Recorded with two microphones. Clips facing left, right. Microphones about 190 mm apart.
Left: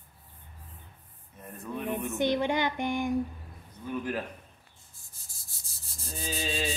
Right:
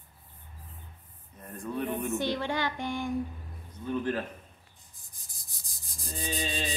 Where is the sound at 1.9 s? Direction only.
20° left (ahead or behind).